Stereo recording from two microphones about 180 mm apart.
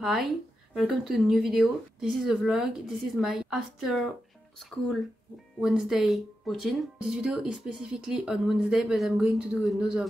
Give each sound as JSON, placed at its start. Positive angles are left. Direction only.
{"t": 0.0, "sound": "speech", "side_deg": 0}